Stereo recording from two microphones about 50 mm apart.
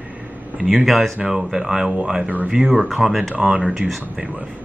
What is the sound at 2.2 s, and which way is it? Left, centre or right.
Speech, right.